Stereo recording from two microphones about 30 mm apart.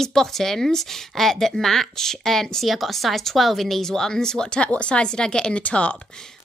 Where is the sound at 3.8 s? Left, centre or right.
Centre.